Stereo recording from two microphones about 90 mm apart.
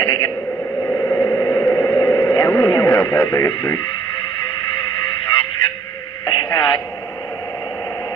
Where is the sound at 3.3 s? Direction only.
40° left (ahead or behind).